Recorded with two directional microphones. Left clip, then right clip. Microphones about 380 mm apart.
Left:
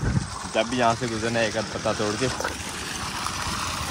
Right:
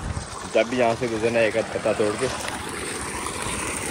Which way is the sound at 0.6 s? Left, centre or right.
Centre.